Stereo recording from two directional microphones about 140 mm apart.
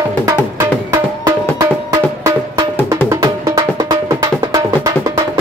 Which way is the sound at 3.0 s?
25° right (ahead or behind).